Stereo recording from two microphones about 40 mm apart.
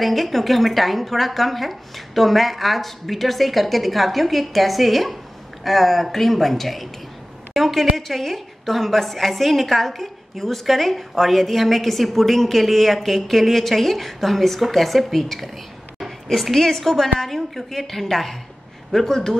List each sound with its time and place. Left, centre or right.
0.0 s a woman's voice: centre